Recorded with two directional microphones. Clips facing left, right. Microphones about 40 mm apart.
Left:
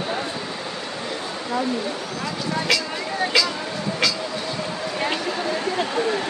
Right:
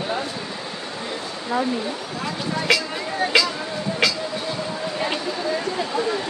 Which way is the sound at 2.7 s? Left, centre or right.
Centre.